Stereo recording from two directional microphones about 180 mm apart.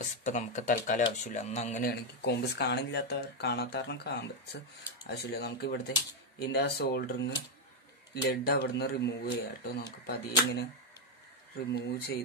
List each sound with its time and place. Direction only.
0.0 s speech: 45° left (ahead or behind)
1.9 s speech: 65° left (ahead or behind)